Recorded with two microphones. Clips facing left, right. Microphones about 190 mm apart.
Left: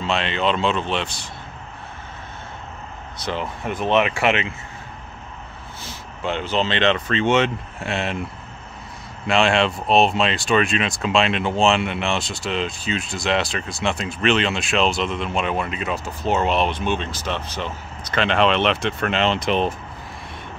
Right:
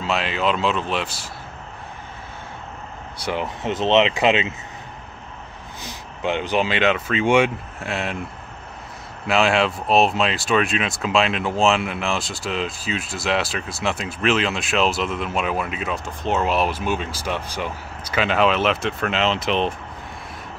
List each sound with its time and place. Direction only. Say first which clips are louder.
0.0 s speech: even; 5° right (ahead or behind)
3.2 s speech: right 1 dB; 15° right (ahead or behind)
5.9 s speech: right 2 dB; 15° right (ahead or behind)
7.8 s speech: left 1 dB; centre (ahead or behind)
9.3 s speech: even; 5° right (ahead or behind)